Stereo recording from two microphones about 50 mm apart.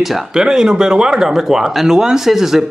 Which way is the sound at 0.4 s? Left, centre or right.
Centre.